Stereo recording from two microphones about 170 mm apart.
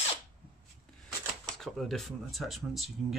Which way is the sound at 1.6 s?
Centre (ahead or behind).